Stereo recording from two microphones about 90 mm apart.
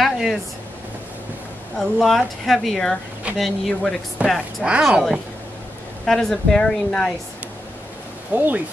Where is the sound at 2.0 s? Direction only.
Centre (ahead or behind).